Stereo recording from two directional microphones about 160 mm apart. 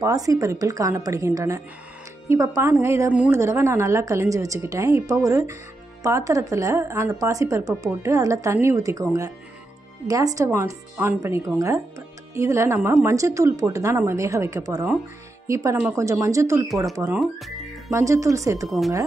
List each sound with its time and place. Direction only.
0.0 s a woman's voice: 20° right (ahead or behind)
17.2 s music: centre (ahead or behind)
17.9 s a woman's voice: 20° right (ahead or behind)